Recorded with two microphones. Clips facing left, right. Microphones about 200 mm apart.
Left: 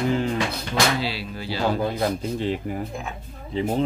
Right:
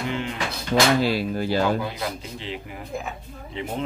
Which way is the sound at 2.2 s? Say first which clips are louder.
Left 9 dB; 45° left (ahead or behind).